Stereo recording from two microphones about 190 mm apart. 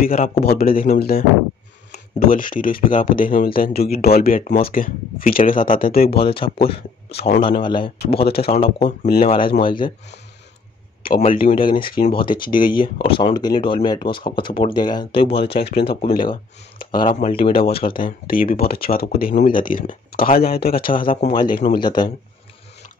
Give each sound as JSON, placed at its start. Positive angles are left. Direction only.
{"t": 0.0, "sound": "speech", "side_deg": 45}
{"t": 6.0, "sound": "speech", "side_deg": 30}
{"t": 9.1, "sound": "speech", "side_deg": 50}
{"t": 9.6, "sound": "speech", "side_deg": 25}
{"t": 11.1, "sound": "speech", "side_deg": 45}
{"t": 12.1, "sound": "speech", "side_deg": 25}
{"t": 16.9, "sound": "speech", "side_deg": 25}
{"t": 17.9, "sound": "speech", "side_deg": 50}
{"t": 21.3, "sound": "speech", "side_deg": 25}